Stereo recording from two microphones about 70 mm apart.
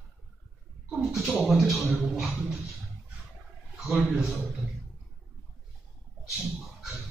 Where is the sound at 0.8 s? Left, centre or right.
Centre.